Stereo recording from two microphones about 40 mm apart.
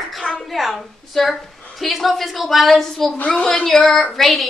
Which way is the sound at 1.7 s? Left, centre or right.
Centre.